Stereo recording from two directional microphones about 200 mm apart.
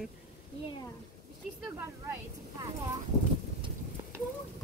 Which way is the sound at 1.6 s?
10° right (ahead or behind).